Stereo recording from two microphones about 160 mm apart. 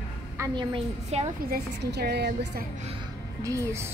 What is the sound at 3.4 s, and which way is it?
Speech, 20° right (ahead or behind).